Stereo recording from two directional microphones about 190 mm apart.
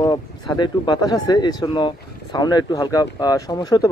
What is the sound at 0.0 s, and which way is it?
Speech, 25° left (ahead or behind).